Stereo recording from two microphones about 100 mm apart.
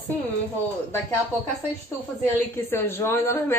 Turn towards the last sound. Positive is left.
turn(degrees=25)  # may be behind; listen again after turning